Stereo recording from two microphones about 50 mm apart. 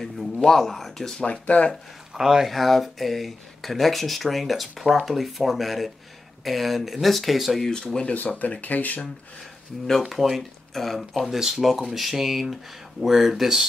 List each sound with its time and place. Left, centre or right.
0.0 s speech: centre
1.4 s speech: left
2.1 s speech: centre
2.5 s speech: centre
7.6 s speech: centre
8.1 s speech: left
10.0 s speech: centre